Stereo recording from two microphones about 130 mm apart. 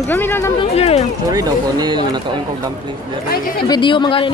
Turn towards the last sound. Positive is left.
turn(degrees=40)  # may be behind; listen again after turning